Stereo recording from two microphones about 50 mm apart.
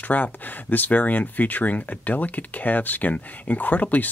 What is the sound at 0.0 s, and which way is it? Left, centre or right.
Speech, left.